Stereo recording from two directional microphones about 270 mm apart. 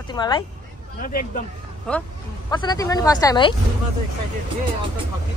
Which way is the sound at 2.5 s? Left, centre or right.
Centre.